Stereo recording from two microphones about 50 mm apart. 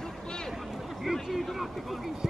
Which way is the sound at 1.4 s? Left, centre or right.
Centre.